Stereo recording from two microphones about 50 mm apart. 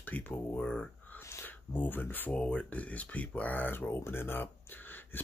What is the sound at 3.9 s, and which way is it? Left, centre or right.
Speech, left.